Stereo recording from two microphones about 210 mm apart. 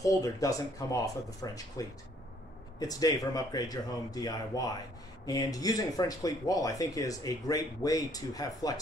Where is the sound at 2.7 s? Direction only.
20° left (ahead or behind).